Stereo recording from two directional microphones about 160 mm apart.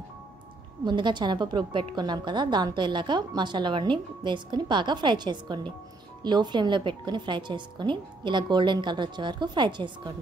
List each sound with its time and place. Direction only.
0.8 s a woman's voice: 30° right (ahead or behind)